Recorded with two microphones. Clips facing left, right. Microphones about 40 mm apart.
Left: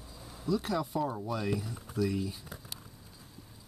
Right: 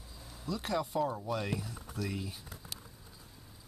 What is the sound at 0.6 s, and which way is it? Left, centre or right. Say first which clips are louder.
Speech: even; centre.